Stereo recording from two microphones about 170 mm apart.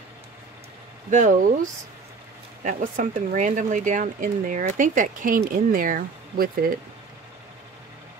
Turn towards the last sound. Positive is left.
turn(degrees=-55)  # may be behind; listen again after turning